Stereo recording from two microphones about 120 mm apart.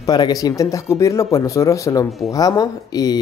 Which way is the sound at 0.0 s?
30° left (ahead or behind).